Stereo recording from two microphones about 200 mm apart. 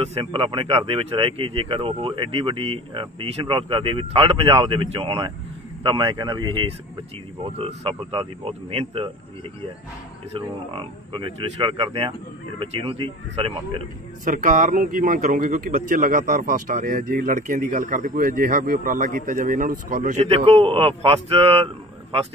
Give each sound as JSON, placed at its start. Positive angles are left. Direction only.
{"t": 0.0, "sound": "speech", "side_deg": -30}
{"t": 7.5, "sound": "speech", "side_deg": -30}
{"t": 10.7, "sound": "speech", "side_deg": -25}
{"t": 14.2, "sound": "a man's voice", "side_deg": -40}